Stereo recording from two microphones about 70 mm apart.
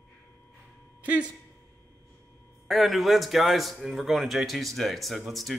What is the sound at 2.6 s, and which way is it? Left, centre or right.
A man's voice, centre.